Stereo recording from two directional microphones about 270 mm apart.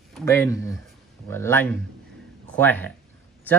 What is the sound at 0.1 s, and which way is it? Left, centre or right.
Speech, centre.